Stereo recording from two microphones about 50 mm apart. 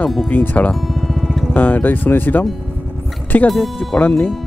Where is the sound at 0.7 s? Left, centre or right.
Centre.